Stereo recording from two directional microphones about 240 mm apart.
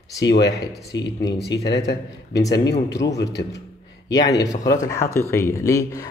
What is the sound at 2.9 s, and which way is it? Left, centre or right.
Speech, left.